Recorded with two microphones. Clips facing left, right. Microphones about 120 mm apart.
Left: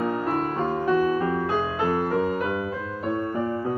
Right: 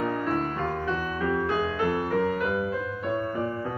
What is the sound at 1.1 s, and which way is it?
Music, 35° left (ahead or behind).